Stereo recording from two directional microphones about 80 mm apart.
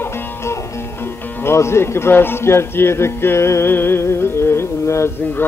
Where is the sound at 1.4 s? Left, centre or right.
Left.